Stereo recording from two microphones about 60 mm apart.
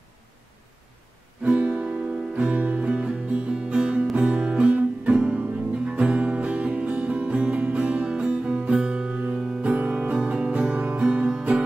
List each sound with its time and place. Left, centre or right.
1.4 s music: right